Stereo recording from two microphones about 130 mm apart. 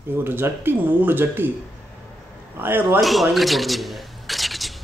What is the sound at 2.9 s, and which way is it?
Speech, centre (ahead or behind).